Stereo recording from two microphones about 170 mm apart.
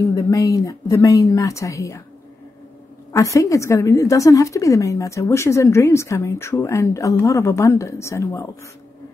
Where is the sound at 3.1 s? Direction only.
20° left (ahead or behind).